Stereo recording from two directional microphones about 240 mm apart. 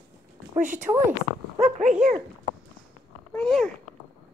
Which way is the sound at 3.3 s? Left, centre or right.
Centre.